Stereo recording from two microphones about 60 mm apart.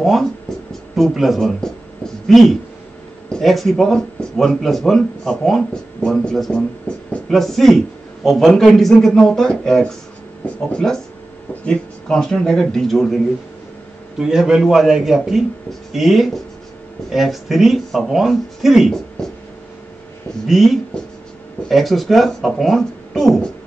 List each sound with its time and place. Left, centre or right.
0.0 s speech: centre
6.9 s speech: centre
7.2 s speech: centre
14.1 s a man's voice: centre
20.4 s speech: centre